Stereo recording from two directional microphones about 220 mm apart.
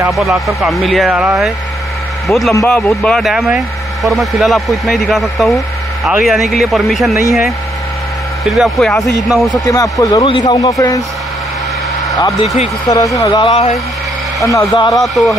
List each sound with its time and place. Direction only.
0.0 s speech: centre (ahead or behind)
8.5 s speech: centre (ahead or behind)
9.5 s speech: 15° left (ahead or behind)
12.2 s speech: 20° left (ahead or behind)
14.4 s speech: 15° left (ahead or behind)
15.2 s speech: centre (ahead or behind)